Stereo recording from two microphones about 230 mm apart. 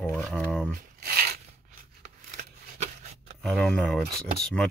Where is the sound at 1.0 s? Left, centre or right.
Right.